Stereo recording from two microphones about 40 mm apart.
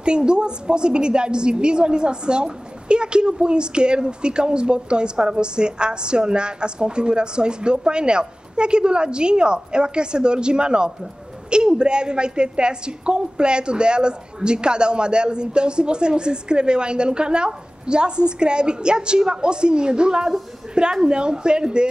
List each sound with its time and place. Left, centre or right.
0.0 s a woman's voice: right